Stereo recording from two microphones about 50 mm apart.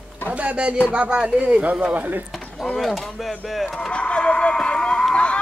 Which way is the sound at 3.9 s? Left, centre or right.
Left.